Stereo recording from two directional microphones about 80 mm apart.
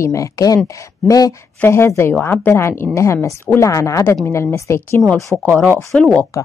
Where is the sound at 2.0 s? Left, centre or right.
Left.